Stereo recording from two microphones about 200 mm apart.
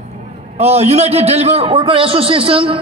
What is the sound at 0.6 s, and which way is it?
A man's voice, 30° right (ahead or behind).